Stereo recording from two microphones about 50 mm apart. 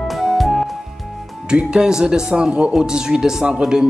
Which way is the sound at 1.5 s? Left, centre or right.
Centre.